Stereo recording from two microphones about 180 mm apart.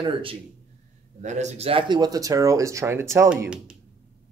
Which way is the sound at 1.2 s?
40° right (ahead or behind).